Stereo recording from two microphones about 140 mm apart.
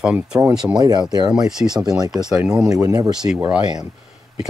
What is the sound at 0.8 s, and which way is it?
Speech, 30° right (ahead or behind).